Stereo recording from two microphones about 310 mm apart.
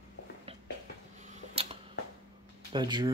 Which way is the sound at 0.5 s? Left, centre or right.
Centre.